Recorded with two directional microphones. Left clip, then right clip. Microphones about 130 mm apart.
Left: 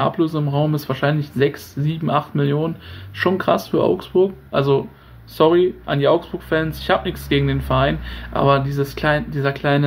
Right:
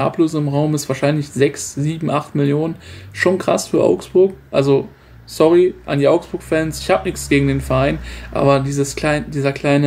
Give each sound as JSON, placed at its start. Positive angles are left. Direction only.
{"t": 0.0, "sound": "speech", "side_deg": -25}